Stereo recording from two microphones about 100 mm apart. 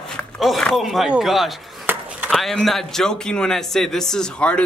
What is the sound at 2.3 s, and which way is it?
A man's voice, 5° left (ahead or behind).